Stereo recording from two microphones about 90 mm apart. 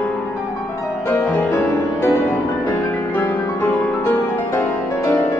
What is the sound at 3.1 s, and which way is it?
Music, 25° left (ahead or behind).